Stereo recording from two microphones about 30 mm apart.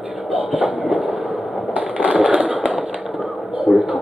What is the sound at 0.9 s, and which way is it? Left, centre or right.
Train, right.